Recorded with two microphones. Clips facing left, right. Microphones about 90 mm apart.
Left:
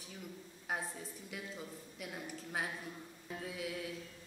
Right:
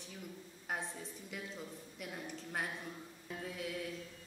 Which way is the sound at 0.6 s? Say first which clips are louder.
Left 1 dB; centre (ahead or behind).